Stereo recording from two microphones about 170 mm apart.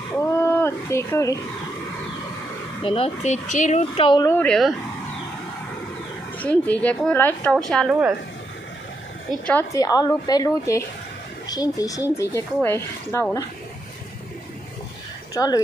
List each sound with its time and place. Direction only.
0.2 s speech: 15° left (ahead or behind)
2.8 s speech: 35° left (ahead or behind)
3.9 s a woman's voice: 30° left (ahead or behind)
4.3 s a woman's voice: 5° left (ahead or behind)
6.4 s a woman's voice: 10° left (ahead or behind)
9.5 s a woman's voice: 15° left (ahead or behind)
15.3 s a woman's voice: 20° left (ahead or behind)